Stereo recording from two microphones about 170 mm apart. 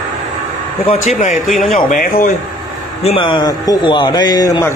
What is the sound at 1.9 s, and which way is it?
Speech, 55° left (ahead or behind).